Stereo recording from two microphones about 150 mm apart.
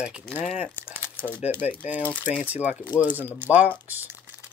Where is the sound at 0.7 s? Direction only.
10° left (ahead or behind).